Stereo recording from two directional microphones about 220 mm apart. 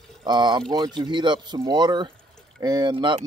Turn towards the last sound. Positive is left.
turn(degrees=-20)  # may be behind; listen again after turning